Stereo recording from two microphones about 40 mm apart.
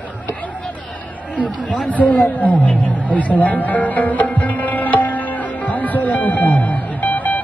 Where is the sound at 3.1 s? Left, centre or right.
Left.